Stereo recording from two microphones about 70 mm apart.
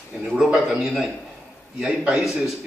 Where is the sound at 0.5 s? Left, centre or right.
Centre.